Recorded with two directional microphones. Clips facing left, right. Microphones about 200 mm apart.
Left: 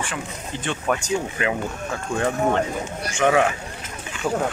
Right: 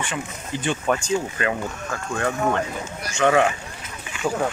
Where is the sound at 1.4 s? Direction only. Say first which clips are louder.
Left 1 dB; 15° left (ahead or behind).